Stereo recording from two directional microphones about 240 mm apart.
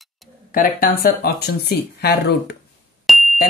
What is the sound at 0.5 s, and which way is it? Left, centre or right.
Speech, left.